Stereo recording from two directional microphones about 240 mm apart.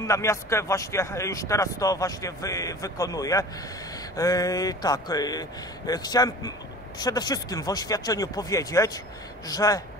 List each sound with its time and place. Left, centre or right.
0.0 s speech: centre